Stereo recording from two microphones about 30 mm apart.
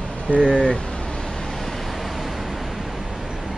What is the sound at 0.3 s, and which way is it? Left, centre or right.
Speech, left.